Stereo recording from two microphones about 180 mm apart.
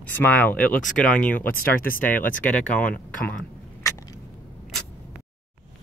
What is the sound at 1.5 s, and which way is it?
Speech, 55° left (ahead or behind).